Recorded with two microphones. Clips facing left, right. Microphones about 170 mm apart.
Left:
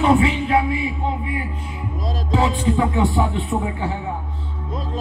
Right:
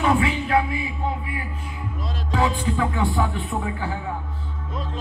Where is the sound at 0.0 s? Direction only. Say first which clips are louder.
Left 4 dB; 20° left (ahead or behind).